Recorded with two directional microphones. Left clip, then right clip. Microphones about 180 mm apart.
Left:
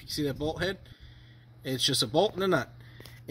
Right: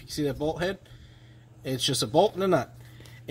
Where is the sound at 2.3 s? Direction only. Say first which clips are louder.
Right 3 dB; 15° left (ahead or behind).